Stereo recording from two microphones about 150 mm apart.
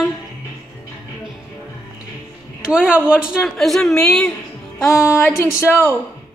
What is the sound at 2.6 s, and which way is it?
A woman's voice, 5° right (ahead or behind).